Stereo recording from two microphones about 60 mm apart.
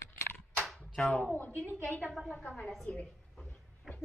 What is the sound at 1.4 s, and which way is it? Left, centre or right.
A woman's voice, left.